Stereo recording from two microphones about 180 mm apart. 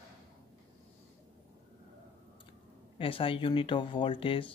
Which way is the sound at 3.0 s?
30° left (ahead or behind).